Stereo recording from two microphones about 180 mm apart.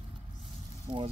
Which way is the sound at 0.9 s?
25° right (ahead or behind).